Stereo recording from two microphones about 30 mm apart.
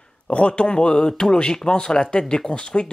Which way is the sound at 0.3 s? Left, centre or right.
Left.